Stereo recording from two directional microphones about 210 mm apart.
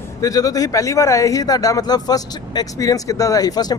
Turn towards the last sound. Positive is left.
turn(degrees=20)  # may be behind; listen again after turning